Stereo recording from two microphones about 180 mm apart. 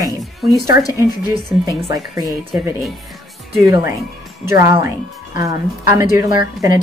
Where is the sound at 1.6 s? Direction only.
20° right (ahead or behind).